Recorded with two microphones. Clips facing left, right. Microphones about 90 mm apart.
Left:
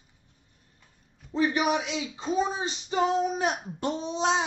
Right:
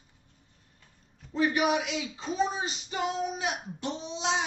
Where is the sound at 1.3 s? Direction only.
30° left (ahead or behind).